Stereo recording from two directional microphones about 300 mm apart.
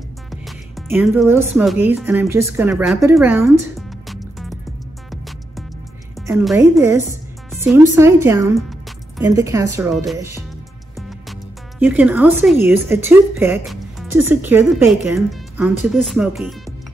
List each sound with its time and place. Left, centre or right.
0.3 s speech: centre
6.2 s a woman's voice: centre
9.2 s a woman's voice: centre
11.0 s music: centre
11.8 s a woman's voice: centre